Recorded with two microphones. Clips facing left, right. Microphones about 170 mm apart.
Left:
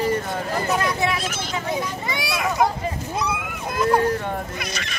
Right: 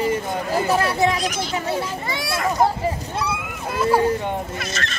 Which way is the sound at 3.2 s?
10° right (ahead or behind).